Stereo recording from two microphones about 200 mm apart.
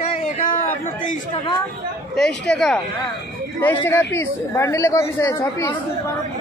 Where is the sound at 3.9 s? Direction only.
10° left (ahead or behind).